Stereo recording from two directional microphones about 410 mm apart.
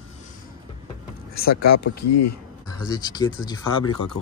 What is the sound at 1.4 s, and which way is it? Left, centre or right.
Speech, left.